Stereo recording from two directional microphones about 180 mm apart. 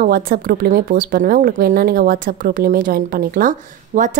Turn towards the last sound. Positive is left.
turn(degrees=-45)  # may be behind; listen again after turning